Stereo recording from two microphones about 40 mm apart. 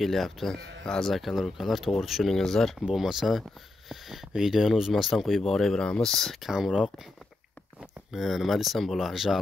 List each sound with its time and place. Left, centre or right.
0.0 s speech: centre
2.3 s speech: centre
2.9 s speech: centre
3.9 s a sound: centre
4.4 s speech: centre
5.8 s speech: left
6.5 s speech: centre
8.1 s speech: centre